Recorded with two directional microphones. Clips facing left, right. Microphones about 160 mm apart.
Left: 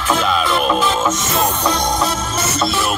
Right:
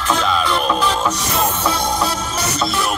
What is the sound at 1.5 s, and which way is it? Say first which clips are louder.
Music: left 1 dB; 5° right (ahead or behind).